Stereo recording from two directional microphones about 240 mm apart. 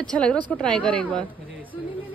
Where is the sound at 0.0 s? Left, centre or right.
Centre.